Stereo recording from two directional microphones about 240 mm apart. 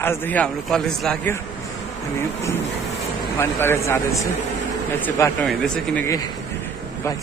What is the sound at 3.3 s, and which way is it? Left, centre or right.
Speech, centre.